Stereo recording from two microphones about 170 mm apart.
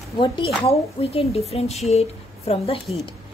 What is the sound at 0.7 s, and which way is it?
A woman's voice, 35° left (ahead or behind).